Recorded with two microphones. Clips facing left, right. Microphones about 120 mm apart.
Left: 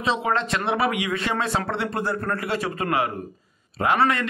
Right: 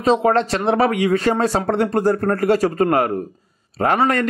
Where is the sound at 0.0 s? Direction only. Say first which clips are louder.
Right 8 dB; 45° right (ahead or behind).